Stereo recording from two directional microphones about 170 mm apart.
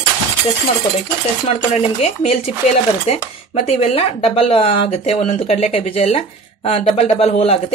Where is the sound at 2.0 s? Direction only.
40° left (ahead or behind).